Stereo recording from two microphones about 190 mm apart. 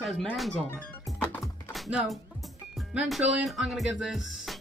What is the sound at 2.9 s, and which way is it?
Speech, 5° right (ahead or behind).